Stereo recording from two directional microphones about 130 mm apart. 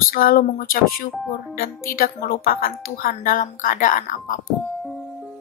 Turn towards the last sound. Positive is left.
turn(degrees=90)